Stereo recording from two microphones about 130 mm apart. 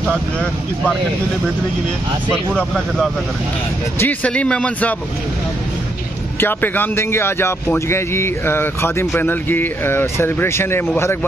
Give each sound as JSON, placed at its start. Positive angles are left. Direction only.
{"t": 0.0, "sound": "speech", "side_deg": 10}
{"t": 2.3, "sound": "speech", "side_deg": 5}
{"t": 6.4, "sound": "speech", "side_deg": 15}